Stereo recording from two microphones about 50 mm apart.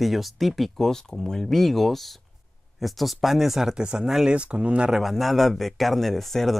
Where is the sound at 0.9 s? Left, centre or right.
Centre.